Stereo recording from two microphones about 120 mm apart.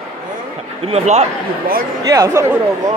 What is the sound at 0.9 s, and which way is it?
Speech, 65° right (ahead or behind).